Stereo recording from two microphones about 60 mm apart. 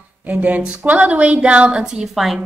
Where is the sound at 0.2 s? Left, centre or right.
Right.